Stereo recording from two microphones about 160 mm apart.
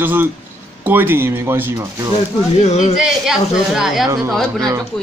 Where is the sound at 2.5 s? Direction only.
45° left (ahead or behind).